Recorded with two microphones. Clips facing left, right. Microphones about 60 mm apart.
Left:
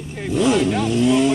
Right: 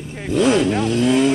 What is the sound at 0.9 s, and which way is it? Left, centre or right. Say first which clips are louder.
Speech: even; right.